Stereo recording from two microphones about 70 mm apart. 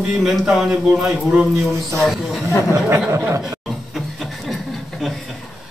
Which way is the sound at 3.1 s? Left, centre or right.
Right.